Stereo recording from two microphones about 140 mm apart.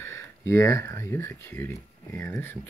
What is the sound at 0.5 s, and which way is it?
Speech, 20° left (ahead or behind).